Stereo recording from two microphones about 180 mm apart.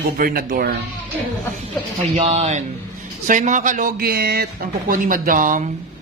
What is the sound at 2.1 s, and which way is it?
Speech, 35° right (ahead or behind).